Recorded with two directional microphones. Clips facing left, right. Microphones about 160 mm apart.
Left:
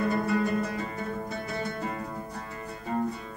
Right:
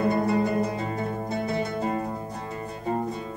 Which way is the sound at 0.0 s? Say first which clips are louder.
Right 3 dB; 25° right (ahead or behind).